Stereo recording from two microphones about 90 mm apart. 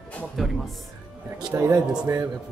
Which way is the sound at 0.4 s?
Centre (ahead or behind).